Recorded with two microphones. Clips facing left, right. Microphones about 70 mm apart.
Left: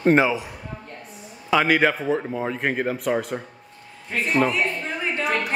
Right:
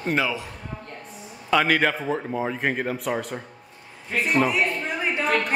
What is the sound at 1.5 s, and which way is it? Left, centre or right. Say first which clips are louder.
A man's voice: left 2 dB; centre.